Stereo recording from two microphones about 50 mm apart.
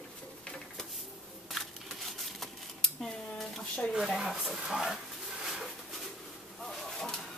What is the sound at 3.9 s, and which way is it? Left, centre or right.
Speech, centre.